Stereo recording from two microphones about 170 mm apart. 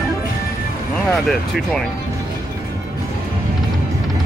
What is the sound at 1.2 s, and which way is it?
Speech, centre (ahead or behind).